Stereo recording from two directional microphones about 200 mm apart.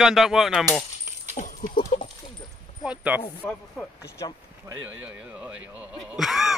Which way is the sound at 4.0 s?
15° left (ahead or behind).